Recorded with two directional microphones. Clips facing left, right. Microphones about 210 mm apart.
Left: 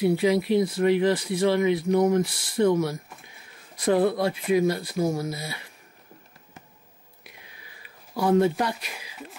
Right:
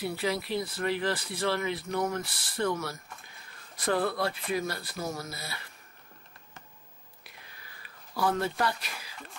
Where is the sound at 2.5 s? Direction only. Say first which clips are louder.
Left 9 dB; 10° left (ahead or behind).